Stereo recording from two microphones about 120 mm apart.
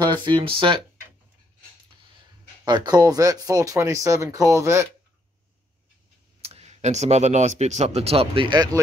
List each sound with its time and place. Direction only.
0.0 s speech: 35° right (ahead or behind)
2.6 s speech: 35° right (ahead or behind)
6.4 s speech: 60° right (ahead or behind)